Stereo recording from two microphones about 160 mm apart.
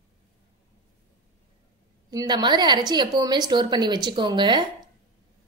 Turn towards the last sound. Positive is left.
turn(degrees=-30)  # may be behind; listen again after turning